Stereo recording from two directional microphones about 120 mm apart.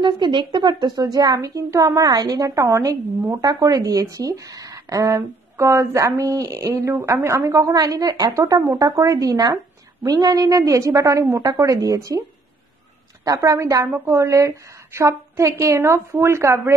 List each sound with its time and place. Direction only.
0.0 s a woman's voice: 40° right (ahead or behind); by 16.7 s 25° right (ahead or behind)